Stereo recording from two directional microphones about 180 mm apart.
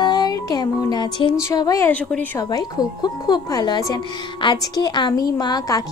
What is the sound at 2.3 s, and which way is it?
A woman's voice, 20° left (ahead or behind).